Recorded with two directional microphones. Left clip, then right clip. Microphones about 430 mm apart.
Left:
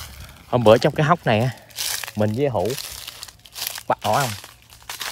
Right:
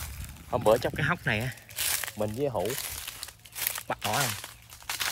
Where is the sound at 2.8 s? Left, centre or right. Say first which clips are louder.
Left 5 dB; centre.